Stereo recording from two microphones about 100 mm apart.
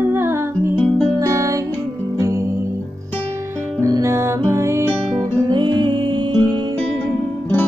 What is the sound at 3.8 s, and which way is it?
Music, 30° right (ahead or behind).